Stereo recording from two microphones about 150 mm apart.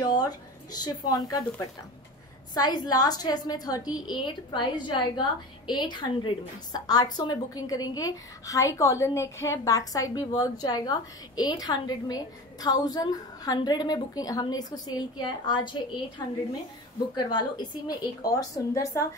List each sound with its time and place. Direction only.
0.0 s speech: 25° left (ahead or behind)
2.5 s a woman's voice: 25° left (ahead or behind)
17.1 s a woman's voice: 30° left (ahead or behind)